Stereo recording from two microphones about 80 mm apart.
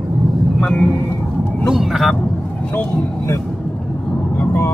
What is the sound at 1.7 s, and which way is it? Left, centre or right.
Vehicle, centre.